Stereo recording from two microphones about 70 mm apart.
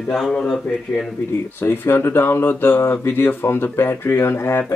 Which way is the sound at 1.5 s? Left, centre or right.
Left.